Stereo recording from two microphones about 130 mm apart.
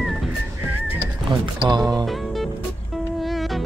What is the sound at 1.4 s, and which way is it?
Speech, 35° right (ahead or behind).